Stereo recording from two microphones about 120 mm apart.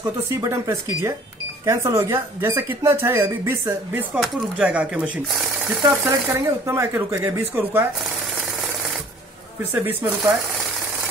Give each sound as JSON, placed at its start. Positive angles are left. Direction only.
{"t": 0.0, "sound": "speech", "side_deg": -30}
{"t": 4.2, "sound": "speech", "side_deg": 0}
{"t": 4.6, "sound": "speech", "side_deg": -10}
{"t": 6.0, "sound": "speech", "side_deg": -25}
{"t": 9.6, "sound": "speech", "side_deg": -20}